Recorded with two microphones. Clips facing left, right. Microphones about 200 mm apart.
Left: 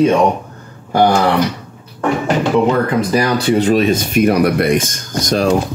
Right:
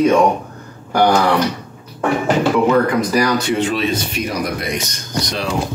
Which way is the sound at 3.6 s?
40° left (ahead or behind).